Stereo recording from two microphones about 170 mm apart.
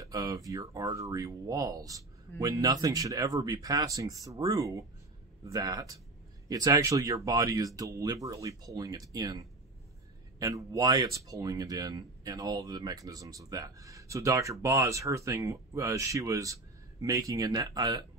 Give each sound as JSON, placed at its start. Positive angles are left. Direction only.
{"t": 0.0, "sound": "speech", "side_deg": -20}